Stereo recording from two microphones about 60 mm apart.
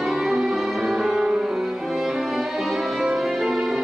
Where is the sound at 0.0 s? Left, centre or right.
Centre.